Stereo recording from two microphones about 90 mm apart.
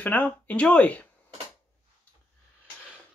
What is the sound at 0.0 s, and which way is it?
Speech, 20° left (ahead or behind).